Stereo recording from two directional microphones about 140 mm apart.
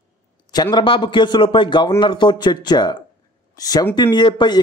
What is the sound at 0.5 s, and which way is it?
A man's voice, 30° left (ahead or behind).